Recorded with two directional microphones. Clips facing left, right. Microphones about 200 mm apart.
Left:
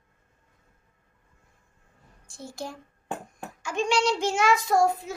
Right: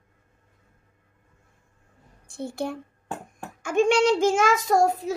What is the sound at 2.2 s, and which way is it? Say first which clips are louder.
A woman's voice: right 7 dB; 60° right (ahead or behind).